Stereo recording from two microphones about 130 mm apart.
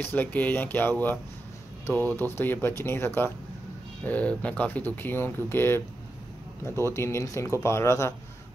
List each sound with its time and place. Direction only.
0.0 s speech: 15° left (ahead or behind)
6.9 s speech: 20° left (ahead or behind)